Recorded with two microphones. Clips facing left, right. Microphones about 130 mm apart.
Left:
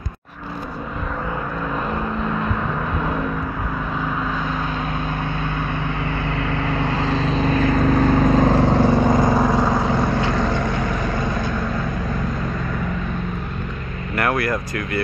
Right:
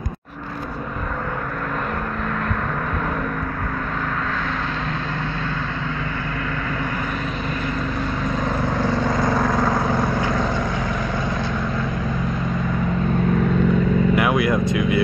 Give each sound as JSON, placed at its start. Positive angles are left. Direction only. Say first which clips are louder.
{"t": 6.8, "sound": "vehicle", "louder": "left 5 dB", "side_deg": 30}
{"t": 7.7, "sound": "vehicle", "louder": "left 9 dB", "side_deg": 45}
{"t": 14.1, "sound": "vehicle", "louder": "right 3 dB", "side_deg": -5}